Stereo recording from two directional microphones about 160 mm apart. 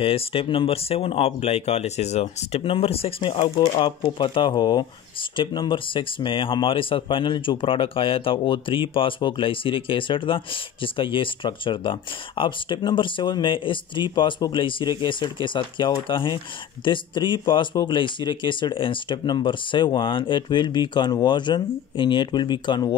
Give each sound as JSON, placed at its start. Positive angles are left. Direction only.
{"t": 0.0, "sound": "speech", "side_deg": 35}